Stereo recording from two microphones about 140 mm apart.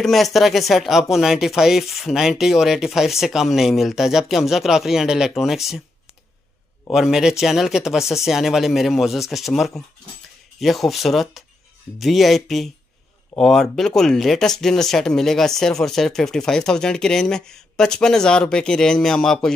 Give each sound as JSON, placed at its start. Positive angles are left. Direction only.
{"t": 0.0, "sound": "speech", "side_deg": 0}
{"t": 6.9, "sound": "speech", "side_deg": -5}